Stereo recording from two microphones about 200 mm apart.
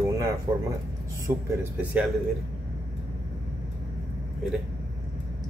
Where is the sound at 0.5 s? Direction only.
30° right (ahead or behind).